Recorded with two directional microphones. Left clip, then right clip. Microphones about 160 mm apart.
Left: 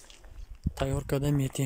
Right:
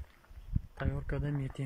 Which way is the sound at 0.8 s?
20° left (ahead or behind).